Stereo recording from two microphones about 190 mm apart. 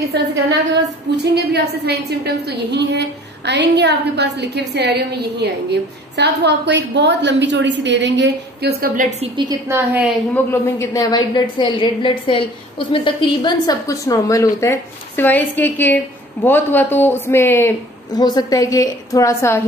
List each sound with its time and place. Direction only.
0.5 s a woman's voice: 65° right (ahead or behind)
9.2 s a woman's voice: 20° right (ahead or behind)
10.3 s a woman's voice: 15° left (ahead or behind)